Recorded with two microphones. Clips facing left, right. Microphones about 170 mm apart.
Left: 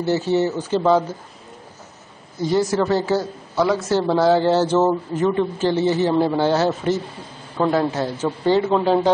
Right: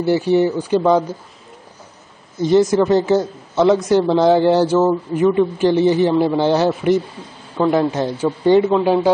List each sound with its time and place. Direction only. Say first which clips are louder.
0.0 s speech: right 4 dB; 15° right (ahead or behind)
2.3 s a man's voice: right 6 dB; 20° right (ahead or behind)